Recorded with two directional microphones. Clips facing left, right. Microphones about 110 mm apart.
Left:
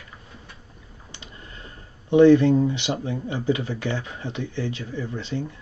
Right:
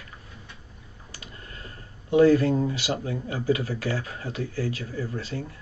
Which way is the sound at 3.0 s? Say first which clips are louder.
Left 1 dB; 25° left (ahead or behind).